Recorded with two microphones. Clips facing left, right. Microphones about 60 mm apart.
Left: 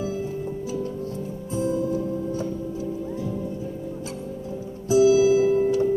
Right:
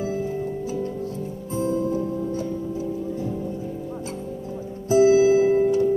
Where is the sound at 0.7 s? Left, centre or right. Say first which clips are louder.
Right 1 dB; right.